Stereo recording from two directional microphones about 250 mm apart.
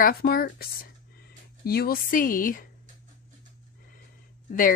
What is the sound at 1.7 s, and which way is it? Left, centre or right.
Speech, left.